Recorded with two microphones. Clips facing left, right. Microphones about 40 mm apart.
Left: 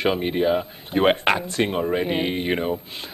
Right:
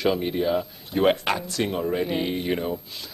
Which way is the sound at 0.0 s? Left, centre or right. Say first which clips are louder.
Left 2 dB; left.